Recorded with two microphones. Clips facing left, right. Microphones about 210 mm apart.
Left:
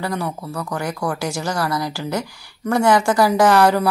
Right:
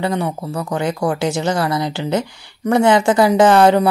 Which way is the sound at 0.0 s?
25° right (ahead or behind).